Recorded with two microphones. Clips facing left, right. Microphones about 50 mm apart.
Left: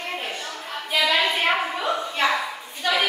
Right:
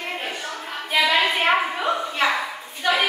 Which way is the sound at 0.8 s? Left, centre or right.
Right.